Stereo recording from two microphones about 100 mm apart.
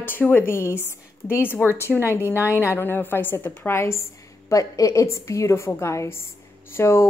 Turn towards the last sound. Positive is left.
turn(degrees=25)  # may be behind; listen again after turning